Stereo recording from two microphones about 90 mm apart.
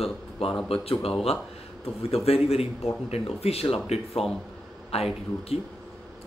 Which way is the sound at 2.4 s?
90° left.